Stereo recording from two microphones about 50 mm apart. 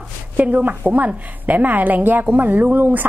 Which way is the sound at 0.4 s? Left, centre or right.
Right.